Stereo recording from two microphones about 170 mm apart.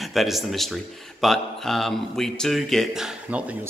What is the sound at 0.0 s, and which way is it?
A man's voice, centre (ahead or behind).